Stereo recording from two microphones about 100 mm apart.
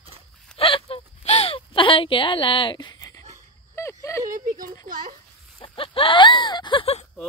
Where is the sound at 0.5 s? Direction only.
65° left (ahead or behind); by 3.2 s 40° left (ahead or behind).